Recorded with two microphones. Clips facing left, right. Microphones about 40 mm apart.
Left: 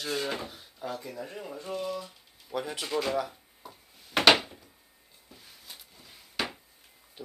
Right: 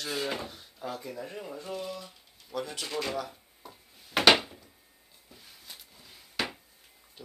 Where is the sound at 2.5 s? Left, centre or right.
Centre.